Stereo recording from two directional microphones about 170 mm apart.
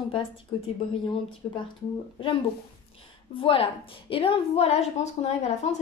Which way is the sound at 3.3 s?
30° left (ahead or behind).